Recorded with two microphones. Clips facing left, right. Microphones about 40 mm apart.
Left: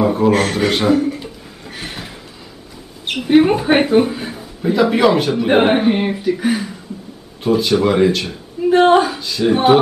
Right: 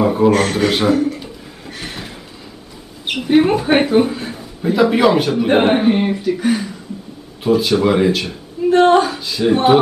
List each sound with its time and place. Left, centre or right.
0.0 s a sound: centre
3.1 s speech: centre
8.6 s a woman's voice: centre